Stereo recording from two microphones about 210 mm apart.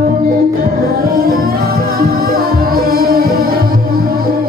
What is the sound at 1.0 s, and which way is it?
Music, 45° right (ahead or behind).